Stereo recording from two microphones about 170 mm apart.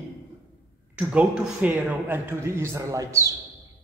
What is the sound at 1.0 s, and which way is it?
A man's voice, 10° right (ahead or behind).